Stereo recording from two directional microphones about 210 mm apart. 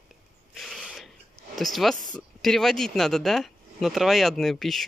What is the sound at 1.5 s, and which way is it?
Speech, centre (ahead or behind).